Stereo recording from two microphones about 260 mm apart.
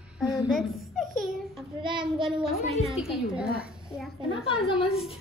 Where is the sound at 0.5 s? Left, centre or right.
Centre.